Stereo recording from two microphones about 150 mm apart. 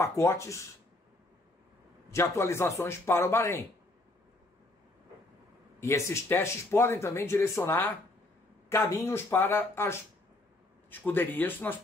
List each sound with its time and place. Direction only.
0.0 s speech: 20° left (ahead or behind)
2.1 s speech: 20° left (ahead or behind)
5.8 s speech: 20° left (ahead or behind)